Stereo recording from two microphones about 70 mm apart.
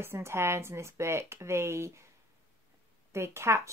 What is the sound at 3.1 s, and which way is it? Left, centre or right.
Speech, right.